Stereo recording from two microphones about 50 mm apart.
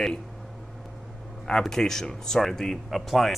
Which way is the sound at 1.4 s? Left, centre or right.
Centre.